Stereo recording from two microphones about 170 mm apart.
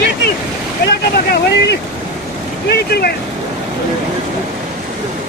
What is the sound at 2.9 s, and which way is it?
Speech, 65° left (ahead or behind).